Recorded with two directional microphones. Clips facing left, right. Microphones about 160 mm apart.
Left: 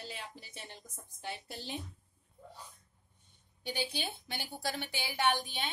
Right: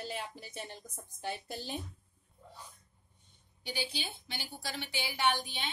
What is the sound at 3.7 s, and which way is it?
Speech, 55° left (ahead or behind).